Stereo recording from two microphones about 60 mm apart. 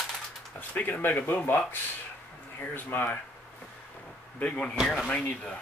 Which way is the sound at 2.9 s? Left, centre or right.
Left.